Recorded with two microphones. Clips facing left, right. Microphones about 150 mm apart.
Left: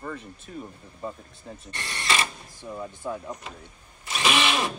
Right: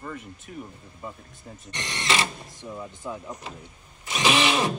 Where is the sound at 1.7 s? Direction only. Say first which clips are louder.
Right 2 dB; 20° right (ahead or behind).